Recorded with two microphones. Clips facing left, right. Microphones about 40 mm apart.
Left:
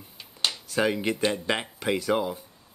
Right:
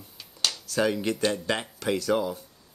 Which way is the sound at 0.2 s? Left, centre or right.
Left.